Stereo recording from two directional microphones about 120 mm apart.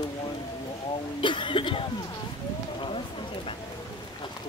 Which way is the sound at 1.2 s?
40° left (ahead or behind).